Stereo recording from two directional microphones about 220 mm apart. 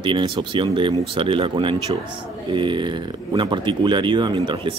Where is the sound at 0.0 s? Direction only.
20° right (ahead or behind).